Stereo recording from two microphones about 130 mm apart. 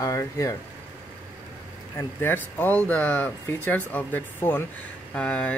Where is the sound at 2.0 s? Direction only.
15° left (ahead or behind).